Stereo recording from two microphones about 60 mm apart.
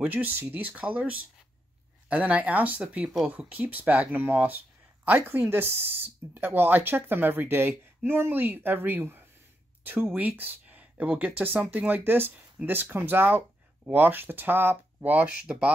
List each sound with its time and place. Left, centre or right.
0.0 s speech: right
15.0 s speech: right